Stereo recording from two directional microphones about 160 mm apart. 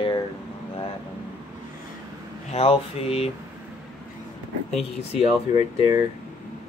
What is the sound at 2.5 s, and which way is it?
Speech, 35° left (ahead or behind).